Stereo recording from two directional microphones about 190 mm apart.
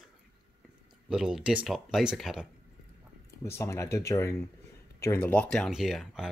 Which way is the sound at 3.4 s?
15° left (ahead or behind).